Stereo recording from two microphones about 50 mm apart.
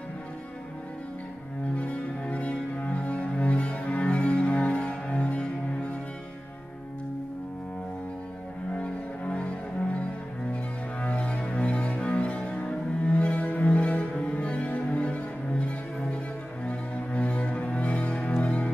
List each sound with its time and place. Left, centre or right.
1.8 s cello: left
8.7 s cello: left
16.6 s music: left